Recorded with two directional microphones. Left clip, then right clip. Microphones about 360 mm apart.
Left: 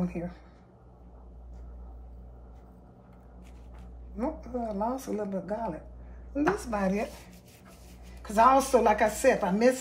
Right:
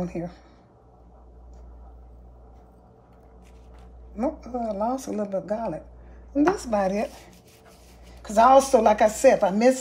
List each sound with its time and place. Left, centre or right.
0.0 s a woman's voice: right
4.2 s a woman's voice: right
8.2 s a woman's voice: right